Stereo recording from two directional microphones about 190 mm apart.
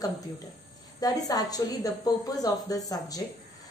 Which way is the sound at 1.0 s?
20° left (ahead or behind).